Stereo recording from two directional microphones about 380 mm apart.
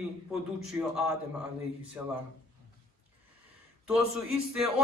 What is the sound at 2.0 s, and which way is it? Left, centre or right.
Speech, centre.